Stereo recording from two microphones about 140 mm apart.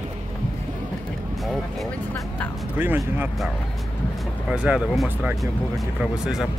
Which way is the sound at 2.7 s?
15° right (ahead or behind).